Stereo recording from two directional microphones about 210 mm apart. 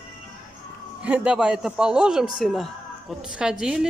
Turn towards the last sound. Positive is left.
turn(degrees=-5)  # may be behind; listen again after turning